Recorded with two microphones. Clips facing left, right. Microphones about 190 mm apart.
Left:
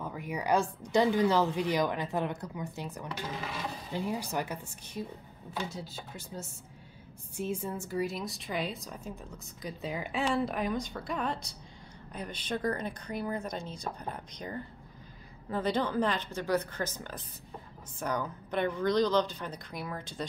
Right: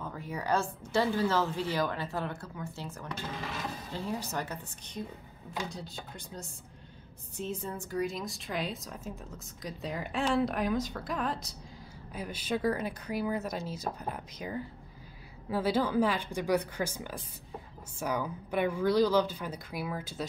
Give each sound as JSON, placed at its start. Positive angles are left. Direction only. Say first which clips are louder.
{"t": 0.0, "sound": "a woman's voice", "louder": "left 2 dB", "side_deg": 15}